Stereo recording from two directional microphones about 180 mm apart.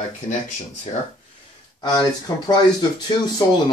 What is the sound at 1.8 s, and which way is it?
Speech, 20° left (ahead or behind).